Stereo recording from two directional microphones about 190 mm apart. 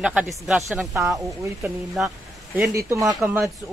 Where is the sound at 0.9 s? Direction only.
15° right (ahead or behind).